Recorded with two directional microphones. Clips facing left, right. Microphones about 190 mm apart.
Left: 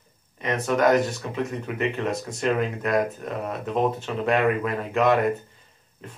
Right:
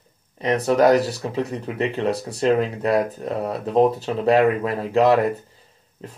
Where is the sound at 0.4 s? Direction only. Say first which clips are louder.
Right 5 dB; 35° right (ahead or behind).